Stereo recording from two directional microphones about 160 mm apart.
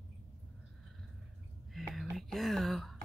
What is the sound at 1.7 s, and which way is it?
Whispering, centre (ahead or behind).